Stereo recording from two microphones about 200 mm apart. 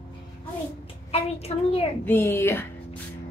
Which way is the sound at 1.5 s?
30° left (ahead or behind).